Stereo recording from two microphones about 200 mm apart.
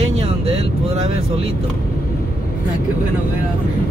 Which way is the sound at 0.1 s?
30° right (ahead or behind).